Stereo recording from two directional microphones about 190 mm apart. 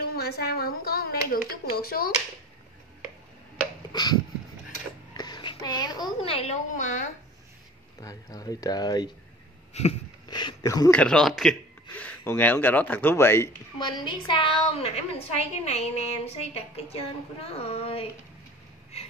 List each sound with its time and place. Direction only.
0.1 s a woman's voice: 55° left (ahead or behind)
3.9 s a sound: 20° left (ahead or behind)
5.1 s a woman's voice: 20° left (ahead or behind); by 7.1 s 40° left (ahead or behind)
8.0 s speech: 20° left (ahead or behind)
9.8 s speech: 35° left (ahead or behind)
10.2 s a sound: 20° left (ahead or behind)
10.9 s a man's voice: 5° left (ahead or behind); by 18.0 s 30° left (ahead or behind)